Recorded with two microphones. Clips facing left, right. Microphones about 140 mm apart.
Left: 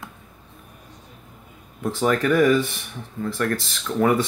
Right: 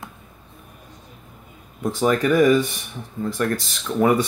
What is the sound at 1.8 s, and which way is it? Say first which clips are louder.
Speech: right 1 dB; 15° right (ahead or behind).